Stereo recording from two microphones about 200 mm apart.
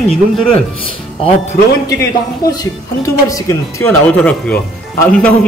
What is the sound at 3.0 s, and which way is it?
Speech, 15° left (ahead or behind).